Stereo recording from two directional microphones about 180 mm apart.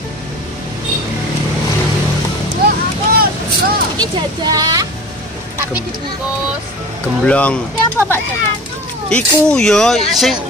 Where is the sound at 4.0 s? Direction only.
20° right (ahead or behind).